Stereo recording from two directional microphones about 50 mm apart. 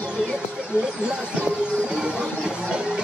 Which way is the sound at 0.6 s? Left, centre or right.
Centre.